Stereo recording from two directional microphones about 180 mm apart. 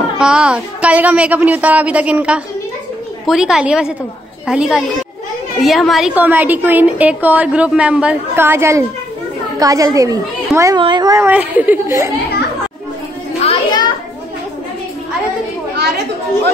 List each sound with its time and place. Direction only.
0.2 s a woman's voice: 5° right (ahead or behind)
13.4 s children playing: 30° left (ahead or behind)